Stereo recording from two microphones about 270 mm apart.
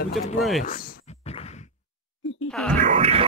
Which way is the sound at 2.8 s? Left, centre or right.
Right.